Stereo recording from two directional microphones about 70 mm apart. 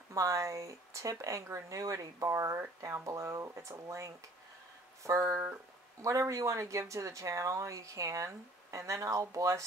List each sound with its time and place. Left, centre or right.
0.1 s speech: right